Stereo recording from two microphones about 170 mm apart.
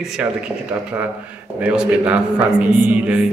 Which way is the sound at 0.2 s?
5° right (ahead or behind).